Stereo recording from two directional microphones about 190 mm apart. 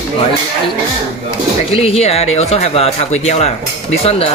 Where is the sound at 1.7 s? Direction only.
30° left (ahead or behind).